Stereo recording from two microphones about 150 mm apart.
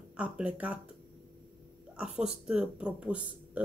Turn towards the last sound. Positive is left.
turn(degrees=-10)  # may be behind; listen again after turning